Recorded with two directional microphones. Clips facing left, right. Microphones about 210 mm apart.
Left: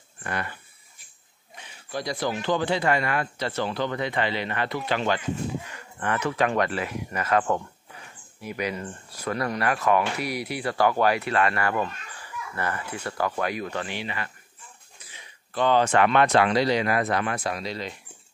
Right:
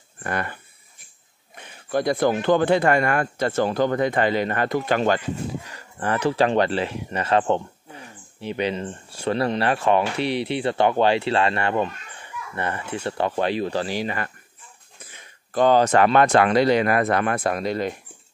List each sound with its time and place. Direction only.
0.2 s speech: 50° right (ahead or behind)
5.7 s speech: 35° right (ahead or behind); by 17.9 s 50° right (ahead or behind)